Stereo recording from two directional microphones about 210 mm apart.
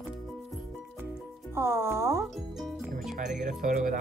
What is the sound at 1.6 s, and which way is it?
Speech, 10° right (ahead or behind).